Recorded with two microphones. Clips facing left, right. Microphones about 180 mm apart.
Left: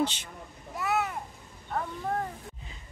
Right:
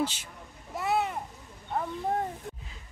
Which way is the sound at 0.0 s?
5° right (ahead or behind).